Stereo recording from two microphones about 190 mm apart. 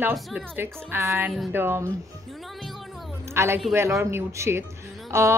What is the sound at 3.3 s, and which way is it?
A woman's voice, 15° right (ahead or behind).